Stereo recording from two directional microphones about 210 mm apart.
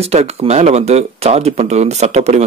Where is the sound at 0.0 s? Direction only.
30° right (ahead or behind).